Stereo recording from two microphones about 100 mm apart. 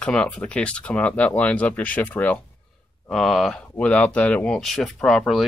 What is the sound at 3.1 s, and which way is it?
Speech, 5° left (ahead or behind).